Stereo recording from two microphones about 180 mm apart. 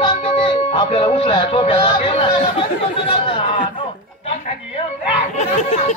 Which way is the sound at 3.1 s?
30° left (ahead or behind).